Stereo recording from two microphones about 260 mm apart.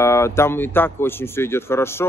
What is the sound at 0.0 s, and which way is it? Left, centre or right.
Speech, centre.